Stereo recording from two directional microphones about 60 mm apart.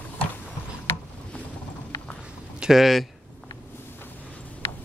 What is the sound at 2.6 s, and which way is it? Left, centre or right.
Speech, centre.